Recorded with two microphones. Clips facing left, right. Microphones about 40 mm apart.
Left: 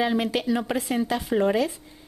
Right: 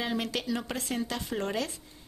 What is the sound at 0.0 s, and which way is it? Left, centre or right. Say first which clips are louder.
Speech: left 8 dB; centre.